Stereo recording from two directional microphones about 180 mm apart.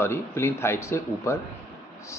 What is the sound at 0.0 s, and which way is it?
Speech, 15° left (ahead or behind).